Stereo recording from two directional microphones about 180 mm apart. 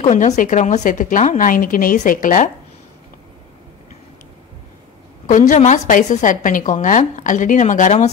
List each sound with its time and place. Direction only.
0.0 s a woman's voice: 40° left (ahead or behind)
5.2 s a woman's voice: 45° left (ahead or behind)